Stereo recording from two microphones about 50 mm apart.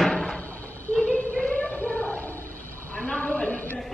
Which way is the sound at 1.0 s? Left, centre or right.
Left.